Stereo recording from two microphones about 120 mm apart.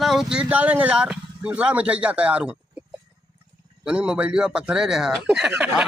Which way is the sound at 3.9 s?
10° right (ahead or behind).